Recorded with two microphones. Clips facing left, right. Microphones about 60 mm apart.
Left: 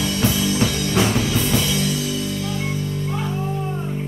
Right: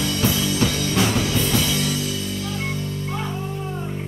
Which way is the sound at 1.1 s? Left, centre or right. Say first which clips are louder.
Left 1 dB; centre.